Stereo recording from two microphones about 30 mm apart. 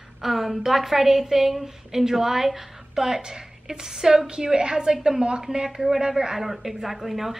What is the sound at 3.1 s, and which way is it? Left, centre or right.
A woman's voice, right.